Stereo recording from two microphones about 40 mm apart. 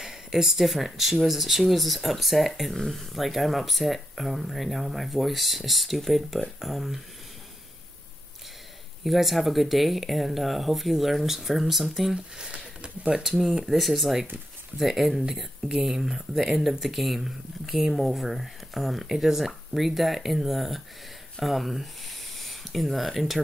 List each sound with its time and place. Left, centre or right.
0.0 s speech: centre
9.0 s speech: centre
12.4 s speech: right
13.7 s speech: centre